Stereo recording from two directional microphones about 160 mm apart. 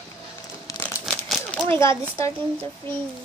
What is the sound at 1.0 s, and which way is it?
Crumpling, 5° left (ahead or behind).